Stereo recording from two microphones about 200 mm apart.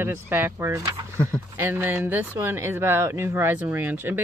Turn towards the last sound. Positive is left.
turn(degrees=-10)  # may be behind; listen again after turning